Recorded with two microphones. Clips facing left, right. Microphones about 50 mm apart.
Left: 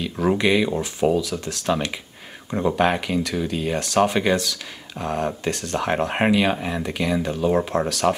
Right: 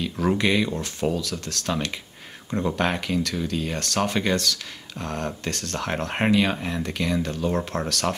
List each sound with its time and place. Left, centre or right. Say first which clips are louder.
0.0 s speech: left 2 dB; centre